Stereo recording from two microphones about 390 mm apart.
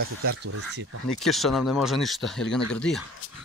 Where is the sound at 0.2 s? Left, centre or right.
Right.